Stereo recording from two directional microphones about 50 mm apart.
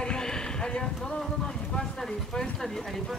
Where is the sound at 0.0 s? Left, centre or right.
Centre.